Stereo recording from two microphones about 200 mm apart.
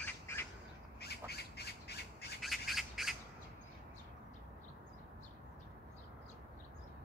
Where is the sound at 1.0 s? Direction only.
55° left (ahead or behind).